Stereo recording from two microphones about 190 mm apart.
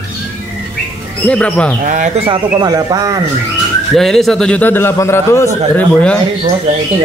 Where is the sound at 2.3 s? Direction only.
20° right (ahead or behind).